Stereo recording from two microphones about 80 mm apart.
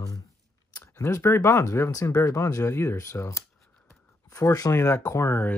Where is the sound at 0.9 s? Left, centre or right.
Left.